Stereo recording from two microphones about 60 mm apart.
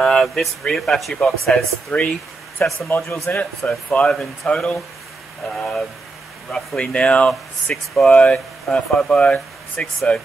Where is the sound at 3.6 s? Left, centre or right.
Centre.